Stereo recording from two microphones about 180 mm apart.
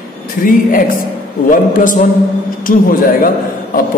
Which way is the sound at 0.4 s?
50° left (ahead or behind).